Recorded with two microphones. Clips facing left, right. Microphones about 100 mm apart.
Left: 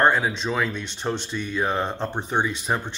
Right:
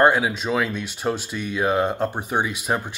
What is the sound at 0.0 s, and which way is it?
Speech, 10° right (ahead or behind).